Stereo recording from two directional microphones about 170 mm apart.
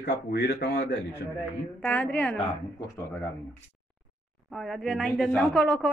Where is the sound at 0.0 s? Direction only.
75° left (ahead or behind).